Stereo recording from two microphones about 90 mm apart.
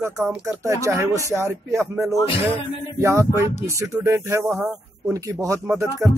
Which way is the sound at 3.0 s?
30° right (ahead or behind).